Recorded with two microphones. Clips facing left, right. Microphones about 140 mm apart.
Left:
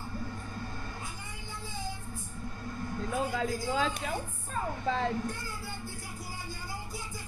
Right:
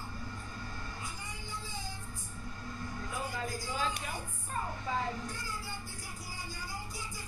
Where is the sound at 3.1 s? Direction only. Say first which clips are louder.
Left 7 dB; 60° left (ahead or behind); by 5.0 s 90° left.